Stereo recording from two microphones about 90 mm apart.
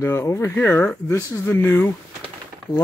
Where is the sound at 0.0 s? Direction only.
30° left (ahead or behind).